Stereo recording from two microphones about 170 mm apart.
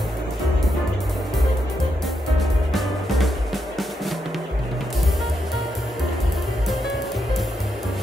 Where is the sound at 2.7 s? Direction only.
Centre (ahead or behind).